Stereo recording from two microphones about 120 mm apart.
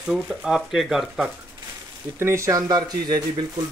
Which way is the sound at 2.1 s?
20° right (ahead or behind).